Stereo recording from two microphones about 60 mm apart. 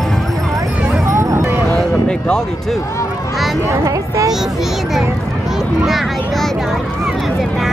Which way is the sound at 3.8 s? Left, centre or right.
Right.